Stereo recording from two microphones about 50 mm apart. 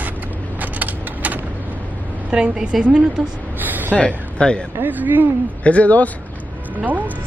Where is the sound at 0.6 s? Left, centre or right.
Right.